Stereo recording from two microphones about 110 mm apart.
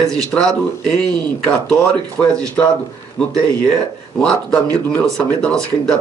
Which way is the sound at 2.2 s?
15° left (ahead or behind).